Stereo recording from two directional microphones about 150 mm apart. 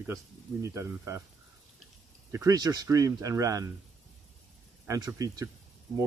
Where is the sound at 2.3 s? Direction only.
25° right (ahead or behind).